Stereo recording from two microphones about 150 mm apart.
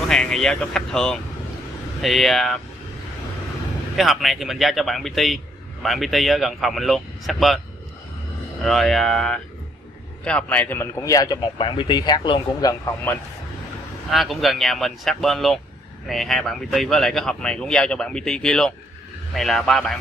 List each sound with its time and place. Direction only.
0.1 s a man's voice: 5° left (ahead or behind)
3.9 s a man's voice: centre (ahead or behind)
8.6 s a man's voice: centre (ahead or behind)
11.0 s speech: 25° left (ahead or behind)
14.1 s a man's voice: centre (ahead or behind)